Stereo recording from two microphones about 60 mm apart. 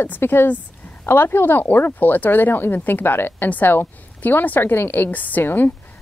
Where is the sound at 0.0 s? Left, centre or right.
Left.